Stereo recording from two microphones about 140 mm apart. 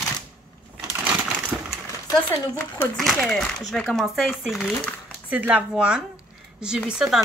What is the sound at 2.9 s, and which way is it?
Speech, centre (ahead or behind).